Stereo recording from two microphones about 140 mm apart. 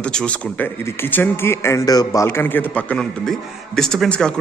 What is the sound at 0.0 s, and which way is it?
A man's voice, 5° left (ahead or behind).